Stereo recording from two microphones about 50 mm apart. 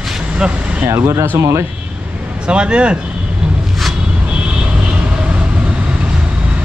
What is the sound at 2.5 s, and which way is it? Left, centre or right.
Speech, right.